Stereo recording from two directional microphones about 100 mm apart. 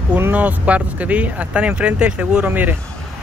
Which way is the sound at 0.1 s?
15° right (ahead or behind).